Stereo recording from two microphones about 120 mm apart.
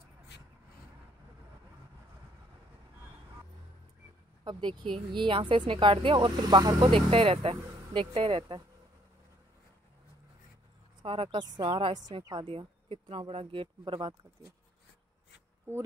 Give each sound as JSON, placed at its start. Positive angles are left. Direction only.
{"t": 4.5, "sound": "speech", "side_deg": -40}
{"t": 6.9, "sound": "speech", "side_deg": -50}
{"t": 11.1, "sound": "speech", "side_deg": -45}
{"t": 12.5, "sound": "speech", "side_deg": -50}